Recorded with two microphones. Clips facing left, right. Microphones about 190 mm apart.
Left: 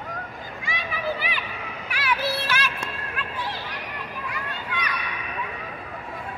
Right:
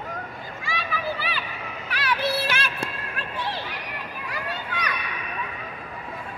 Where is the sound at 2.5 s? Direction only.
35° right (ahead or behind).